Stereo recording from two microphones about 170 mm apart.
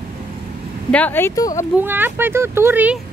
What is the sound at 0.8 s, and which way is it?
Speech, 10° left (ahead or behind).